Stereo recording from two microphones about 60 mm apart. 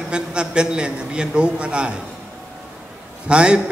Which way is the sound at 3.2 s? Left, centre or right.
Centre.